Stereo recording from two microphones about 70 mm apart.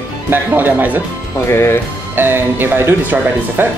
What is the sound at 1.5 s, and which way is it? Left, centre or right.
Speech, left.